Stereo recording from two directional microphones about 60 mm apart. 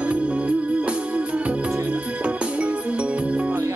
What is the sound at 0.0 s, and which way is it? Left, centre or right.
Music, right.